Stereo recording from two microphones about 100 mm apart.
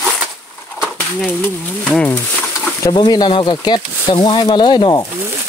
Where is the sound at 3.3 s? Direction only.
55° left (ahead or behind).